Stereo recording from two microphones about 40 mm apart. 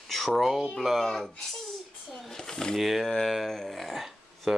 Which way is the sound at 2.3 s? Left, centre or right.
Centre.